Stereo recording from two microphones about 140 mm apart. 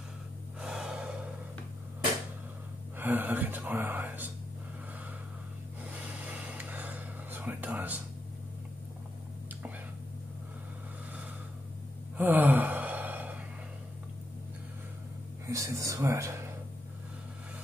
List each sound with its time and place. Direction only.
0.6 s gasp: 5° right (ahead or behind)
3.0 s speech: 15° right (ahead or behind)
6.6 s whispering: 10° right (ahead or behind)
12.2 s gasp: 15° right (ahead or behind)
15.4 s speech: 20° right (ahead or behind)